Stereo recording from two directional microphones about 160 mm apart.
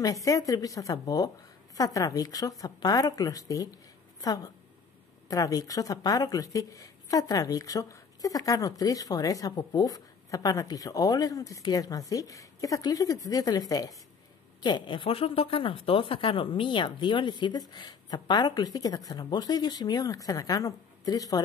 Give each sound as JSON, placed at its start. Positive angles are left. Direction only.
{"t": 0.0, "sound": "speech", "side_deg": 20}
{"t": 5.3, "sound": "speech", "side_deg": 20}